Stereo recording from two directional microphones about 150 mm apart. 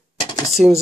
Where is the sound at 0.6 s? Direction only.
5° right (ahead or behind).